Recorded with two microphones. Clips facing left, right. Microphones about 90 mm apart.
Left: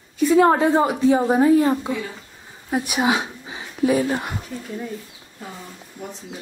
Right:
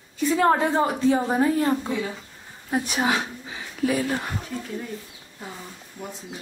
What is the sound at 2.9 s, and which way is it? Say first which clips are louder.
Speech: left 5 dB; 15° left (ahead or behind).